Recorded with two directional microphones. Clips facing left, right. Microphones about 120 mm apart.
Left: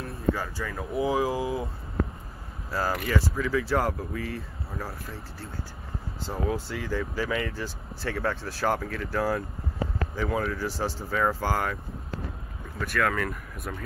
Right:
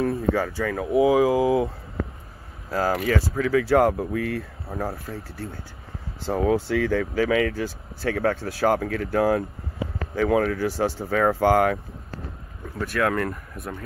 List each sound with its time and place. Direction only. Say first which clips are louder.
0.0 s speech: right 6 dB; 80° right; by 0.8 s 60° right (ahead or behind)
0.9 s speech: right 8 dB; 20° right (ahead or behind)
2.7 s speech: right 5 dB; 50° right (ahead or behind)
3.1 s speech: right 5 dB; 60° right (ahead or behind); by 7.6 s 85° right
7.6 s speech: right 6 dB; 50° right (ahead or behind)
12.6 s speech: right 3 dB; 30° right (ahead or behind)